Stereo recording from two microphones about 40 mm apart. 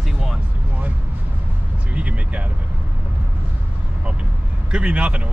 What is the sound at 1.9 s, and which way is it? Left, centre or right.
Speech, right.